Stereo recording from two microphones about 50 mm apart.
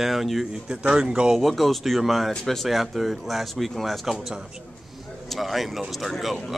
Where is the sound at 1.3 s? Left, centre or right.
Centre.